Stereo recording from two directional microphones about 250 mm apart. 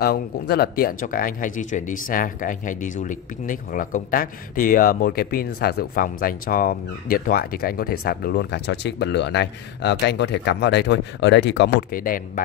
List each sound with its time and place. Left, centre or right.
0.0 s speech: left